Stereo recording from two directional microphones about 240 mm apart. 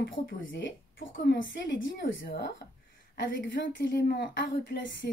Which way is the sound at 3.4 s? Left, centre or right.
Left.